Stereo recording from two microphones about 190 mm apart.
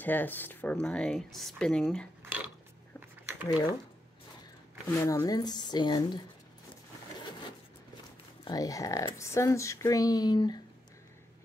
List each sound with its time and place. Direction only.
0.0 s speech: 10° left (ahead or behind)
2.2 s a sound: 5° right (ahead or behind)
4.8 s speech: 15° left (ahead or behind)
8.5 s speech: 20° left (ahead or behind)